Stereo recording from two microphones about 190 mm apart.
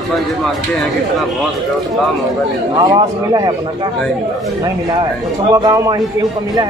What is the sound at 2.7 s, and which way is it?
Speech, 20° right (ahead or behind).